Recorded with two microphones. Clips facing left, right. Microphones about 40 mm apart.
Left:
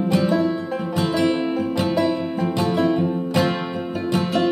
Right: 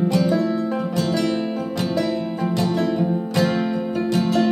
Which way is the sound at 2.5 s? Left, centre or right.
Centre.